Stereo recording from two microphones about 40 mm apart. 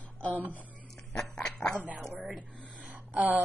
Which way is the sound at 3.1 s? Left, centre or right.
Right.